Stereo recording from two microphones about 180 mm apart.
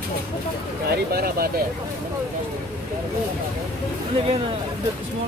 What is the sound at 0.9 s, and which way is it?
Speech, 60° right (ahead or behind).